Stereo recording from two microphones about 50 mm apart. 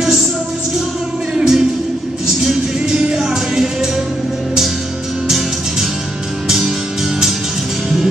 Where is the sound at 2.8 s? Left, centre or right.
Centre.